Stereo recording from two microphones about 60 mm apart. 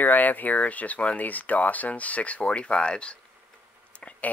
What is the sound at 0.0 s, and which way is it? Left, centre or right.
Speech, left.